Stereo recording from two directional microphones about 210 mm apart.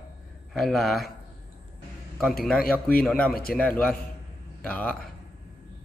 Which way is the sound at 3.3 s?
45° left (ahead or behind).